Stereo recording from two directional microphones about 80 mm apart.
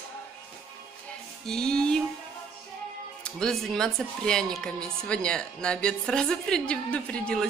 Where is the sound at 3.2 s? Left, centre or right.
Centre.